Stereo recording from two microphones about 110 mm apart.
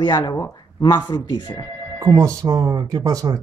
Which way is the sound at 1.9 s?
30° right (ahead or behind).